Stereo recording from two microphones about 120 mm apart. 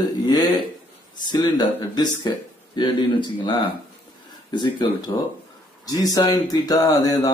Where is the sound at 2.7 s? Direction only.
40° left (ahead or behind).